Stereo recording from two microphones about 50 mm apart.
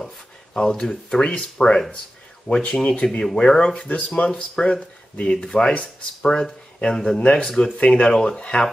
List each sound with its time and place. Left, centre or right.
0.6 s speech: centre